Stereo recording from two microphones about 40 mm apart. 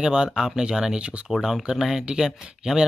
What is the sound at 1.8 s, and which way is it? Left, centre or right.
Speech, centre.